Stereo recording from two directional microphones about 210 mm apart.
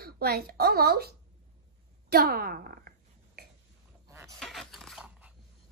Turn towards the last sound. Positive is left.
turn(degrees=-5)  # may be behind; listen again after turning